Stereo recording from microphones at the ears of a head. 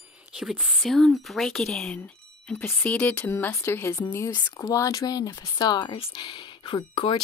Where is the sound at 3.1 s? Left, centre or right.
Left.